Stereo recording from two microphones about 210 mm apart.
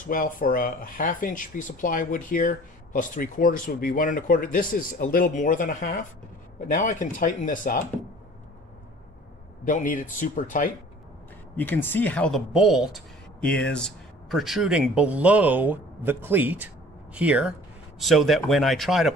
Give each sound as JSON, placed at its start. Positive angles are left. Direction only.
{"t": 0.0, "sound": "speech", "side_deg": 40}
{"t": 9.7, "sound": "speech", "side_deg": 40}
{"t": 11.5, "sound": "speech", "side_deg": 10}